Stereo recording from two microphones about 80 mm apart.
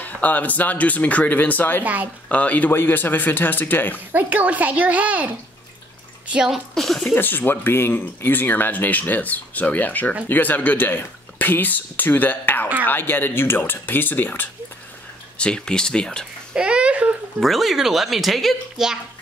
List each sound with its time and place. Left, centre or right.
0.0 s speech: left
4.1 s a child's voice: right
6.5 s speech: centre
7.1 s speech: left
15.3 s speech: centre
16.5 s a sound: centre
17.4 s speech: centre